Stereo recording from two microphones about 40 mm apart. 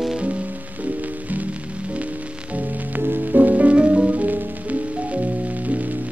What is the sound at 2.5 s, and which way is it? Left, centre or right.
Music, right.